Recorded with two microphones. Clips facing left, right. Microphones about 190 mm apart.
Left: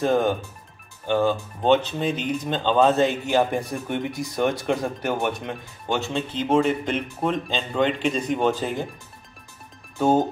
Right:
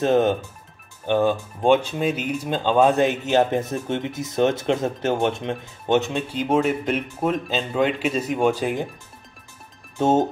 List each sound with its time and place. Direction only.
0.0 s speech: 20° right (ahead or behind)
9.9 s speech: 25° right (ahead or behind)